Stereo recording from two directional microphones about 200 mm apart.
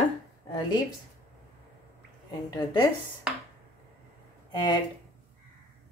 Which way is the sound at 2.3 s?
20° left (ahead or behind).